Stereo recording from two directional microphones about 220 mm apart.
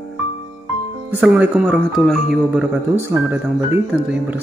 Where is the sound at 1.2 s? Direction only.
5° right (ahead or behind).